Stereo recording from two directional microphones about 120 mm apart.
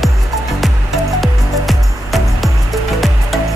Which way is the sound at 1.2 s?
Centre (ahead or behind).